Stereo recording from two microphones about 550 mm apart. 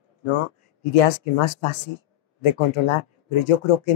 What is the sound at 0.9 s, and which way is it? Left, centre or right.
Speech, left.